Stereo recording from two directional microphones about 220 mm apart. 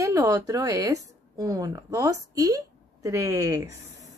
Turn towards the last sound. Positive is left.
turn(degrees=-15)  # may be behind; listen again after turning